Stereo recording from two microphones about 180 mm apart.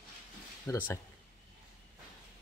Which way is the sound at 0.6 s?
15° left (ahead or behind).